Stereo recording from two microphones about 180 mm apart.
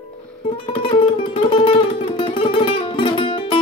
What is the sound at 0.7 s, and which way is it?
Music, 30° left (ahead or behind).